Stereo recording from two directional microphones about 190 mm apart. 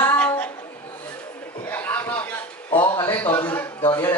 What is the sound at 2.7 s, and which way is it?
Speech, 25° left (ahead or behind).